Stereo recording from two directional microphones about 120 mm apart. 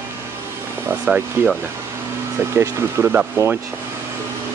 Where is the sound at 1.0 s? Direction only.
15° right (ahead or behind).